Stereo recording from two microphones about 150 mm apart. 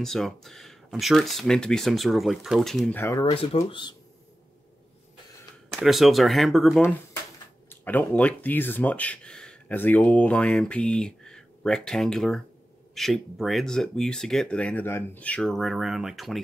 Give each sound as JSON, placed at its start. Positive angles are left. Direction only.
{"t": 0.0, "sound": "speech", "side_deg": 0}
{"t": 3.0, "sound": "speech", "side_deg": 20}
{"t": 3.3, "sound": "speech", "side_deg": 40}
{"t": 5.8, "sound": "speech", "side_deg": 0}
{"t": 7.7, "sound": "speech", "side_deg": 10}